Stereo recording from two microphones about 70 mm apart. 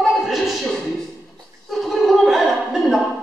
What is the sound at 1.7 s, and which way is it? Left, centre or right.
Gargling, centre.